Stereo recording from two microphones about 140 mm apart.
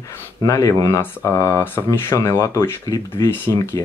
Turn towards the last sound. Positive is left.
turn(degrees=20)  # may be behind; listen again after turning